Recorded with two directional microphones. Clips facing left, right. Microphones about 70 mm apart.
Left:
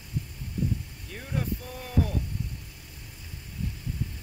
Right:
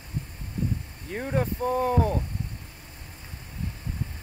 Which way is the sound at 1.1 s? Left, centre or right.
Right.